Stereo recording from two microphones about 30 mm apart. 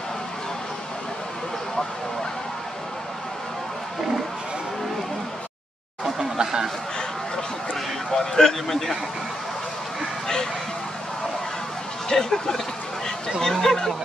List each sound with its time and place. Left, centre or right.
6.1 s a sound: centre
8.1 s speech: centre
10.2 s vehicle: centre
12.1 s speech: left